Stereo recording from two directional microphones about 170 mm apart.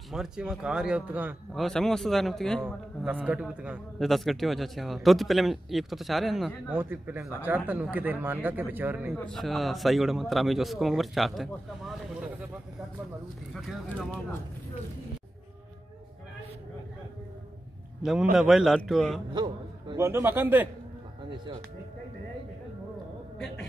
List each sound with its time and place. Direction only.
0.1 s a man's voice: 5° right (ahead or behind)
1.5 s a man's voice: centre (ahead or behind)
6.7 s speech: 10° right (ahead or behind)
9.2 s a man's voice: centre (ahead or behind)
13.5 s a man's voice: centre (ahead or behind)
18.3 s a man's voice: centre (ahead or behind)
19.3 s a man's voice: 25° right (ahead or behind)
20.0 s speech: 15° right (ahead or behind)